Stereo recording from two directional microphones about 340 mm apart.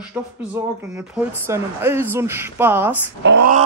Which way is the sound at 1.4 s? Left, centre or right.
Centre.